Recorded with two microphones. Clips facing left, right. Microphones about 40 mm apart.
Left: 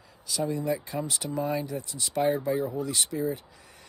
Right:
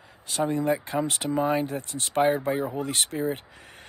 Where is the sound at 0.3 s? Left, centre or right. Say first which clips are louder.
Right 4 dB; right.